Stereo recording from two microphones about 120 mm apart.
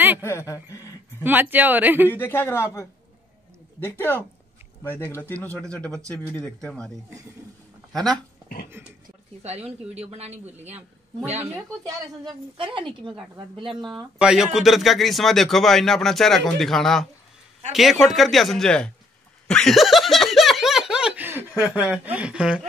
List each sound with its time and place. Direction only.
0.2 s speech: 20° left (ahead or behind)
1.2 s speech: 15° right (ahead or behind)
2.0 s a man's voice: 15° left (ahead or behind)
4.8 s a man's voice: 15° left (ahead or behind)
7.9 s speech: centre (ahead or behind)
8.8 s speech: 20° right (ahead or behind)
9.9 s speech: 60° right (ahead or behind)
12.5 s speech: 45° right (ahead or behind)
14.1 s speech: 5° right (ahead or behind)
19.4 s a sound: 5° left (ahead or behind); by 21.8 s 15° right (ahead or behind)
21.9 s speech: 10° right (ahead or behind)